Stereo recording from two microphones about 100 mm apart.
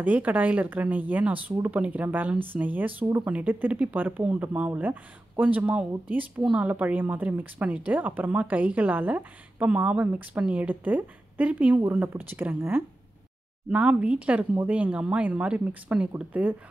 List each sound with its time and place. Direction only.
0.0 s a woman's voice: 15° right (ahead or behind)